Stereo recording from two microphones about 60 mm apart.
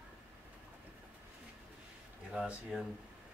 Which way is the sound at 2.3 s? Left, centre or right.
Centre.